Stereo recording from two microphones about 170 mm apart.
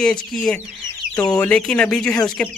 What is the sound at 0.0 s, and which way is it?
Speech, 5° left (ahead or behind).